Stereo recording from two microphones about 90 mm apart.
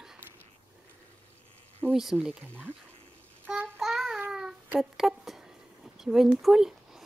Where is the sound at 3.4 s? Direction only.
20° right (ahead or behind).